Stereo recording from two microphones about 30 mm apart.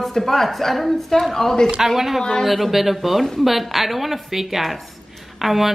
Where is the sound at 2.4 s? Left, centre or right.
Centre.